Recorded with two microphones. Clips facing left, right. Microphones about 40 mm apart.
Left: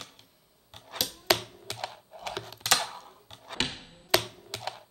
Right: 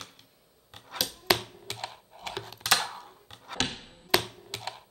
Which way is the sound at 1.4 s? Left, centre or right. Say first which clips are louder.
Left 1 dB; centre.